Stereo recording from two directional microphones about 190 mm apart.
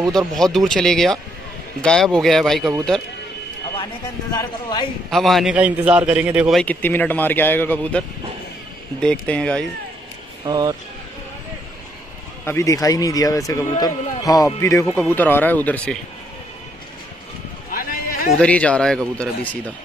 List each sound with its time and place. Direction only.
0.1 s a man's voice: centre (ahead or behind)
4.4 s speech: 25° left (ahead or behind)
5.1 s a man's voice: centre (ahead or behind)
6.6 s speech: 10° left (ahead or behind)
9.0 s a man's voice: 5° left (ahead or behind)
10.4 s speech: 20° right (ahead or behind)
12.4 s speech: 15° left (ahead or behind)
17.6 s a sound: 50° left (ahead or behind)
18.4 s a man's voice: 5° left (ahead or behind)